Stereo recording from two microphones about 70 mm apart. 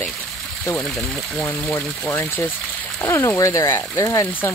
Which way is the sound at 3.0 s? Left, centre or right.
Left.